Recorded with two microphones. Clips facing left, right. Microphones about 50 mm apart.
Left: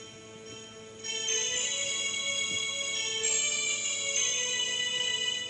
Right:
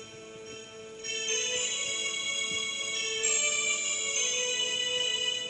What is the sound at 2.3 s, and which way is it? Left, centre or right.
Music, left.